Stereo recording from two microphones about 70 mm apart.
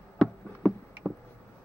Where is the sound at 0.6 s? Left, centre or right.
Centre.